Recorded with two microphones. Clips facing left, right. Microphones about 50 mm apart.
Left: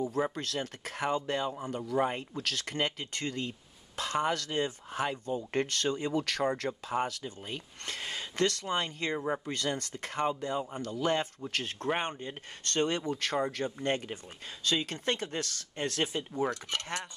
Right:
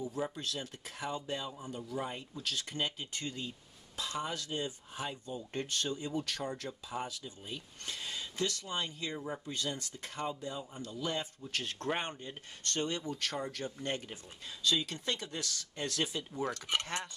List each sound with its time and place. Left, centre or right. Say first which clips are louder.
0.2 s speech: left 5 dB; left
9.5 s speech: left 5 dB; left
16.7 s speech: right 2 dB; centre